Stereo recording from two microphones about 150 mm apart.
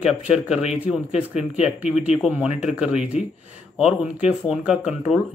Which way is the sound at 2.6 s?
5° right (ahead or behind).